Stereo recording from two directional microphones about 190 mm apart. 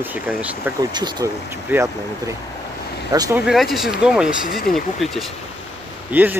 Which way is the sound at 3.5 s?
Centre (ahead or behind).